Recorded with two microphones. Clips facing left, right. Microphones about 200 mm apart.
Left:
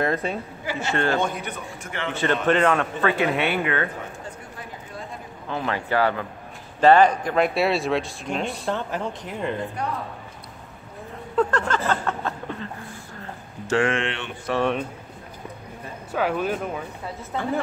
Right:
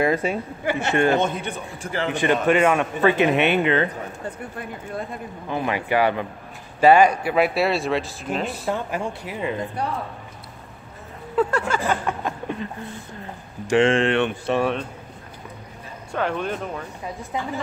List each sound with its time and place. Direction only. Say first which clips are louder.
0.0 s speech: right 3 dB; 10° right (ahead or behind)
0.7 s a man's voice: right 5 dB; 60° right (ahead or behind)
0.9 s speech: right 3 dB; 20° right (ahead or behind); by 2.0 s 35° right (ahead or behind)
2.1 s speech: right 2 dB; 10° right (ahead or behind)
5.5 s speech: right 2 dB; 15° right (ahead or behind)
11.3 s speech: right 1 dB; 10° right (ahead or behind)
16.1 s speech: left 1 dB; 5° left (ahead or behind)
17.3 s speech: left 1 dB; 15° right (ahead or behind)